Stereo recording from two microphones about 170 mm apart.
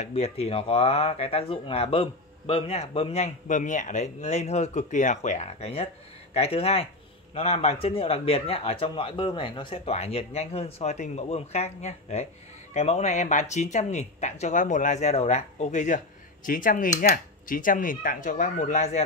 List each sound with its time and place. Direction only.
0.0 s speech: 35° left (ahead or behind)